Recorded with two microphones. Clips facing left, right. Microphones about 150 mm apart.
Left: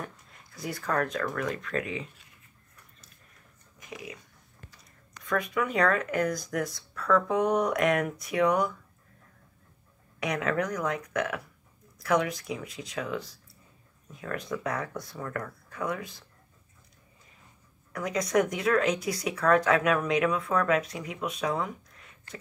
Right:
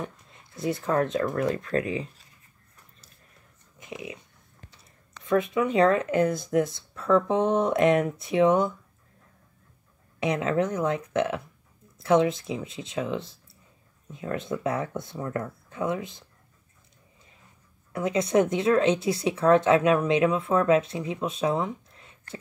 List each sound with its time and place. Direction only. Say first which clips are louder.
0.0 s speech: right 4 dB; 25° right (ahead or behind)
3.8 s speech: right 4 dB; 25° right (ahead or behind)
5.2 s speech: right 5 dB; 25° right (ahead or behind)
10.2 s speech: right 4 dB; 25° right (ahead or behind)
17.9 s speech: right 4 dB; 25° right (ahead or behind)